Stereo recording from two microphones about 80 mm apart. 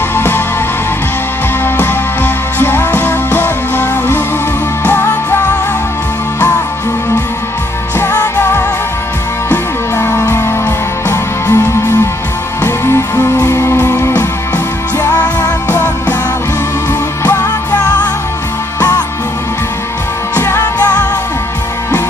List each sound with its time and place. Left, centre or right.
0.1 s music: left
1.8 s music: left
8.2 s music: left
9.9 s music: left
13.1 s music: left
15.0 s music: left
18.8 s music: left
20.3 s music: left
20.6 s music: left